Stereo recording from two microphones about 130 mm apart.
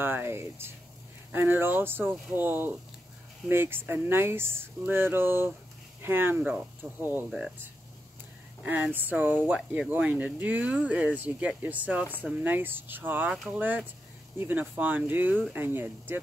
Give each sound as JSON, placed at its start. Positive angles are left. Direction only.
{"t": 0.0, "sound": "speech", "side_deg": -15}
{"t": 7.2, "sound": "speech", "side_deg": -5}
{"t": 8.6, "sound": "speech", "side_deg": -15}